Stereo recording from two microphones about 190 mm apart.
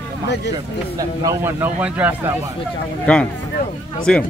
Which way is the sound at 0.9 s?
15° right (ahead or behind).